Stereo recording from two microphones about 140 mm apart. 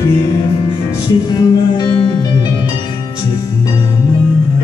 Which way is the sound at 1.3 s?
35° left (ahead or behind).